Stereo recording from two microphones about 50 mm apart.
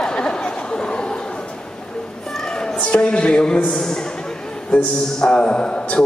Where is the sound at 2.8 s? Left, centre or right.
Left.